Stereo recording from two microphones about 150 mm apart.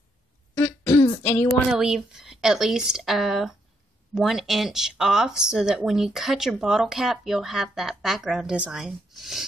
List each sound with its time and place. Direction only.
0.6 s throat clearing: 20° left (ahead or behind)
1.2 s a sound: 20° left (ahead or behind)
1.7 s speech: 5° right (ahead or behind)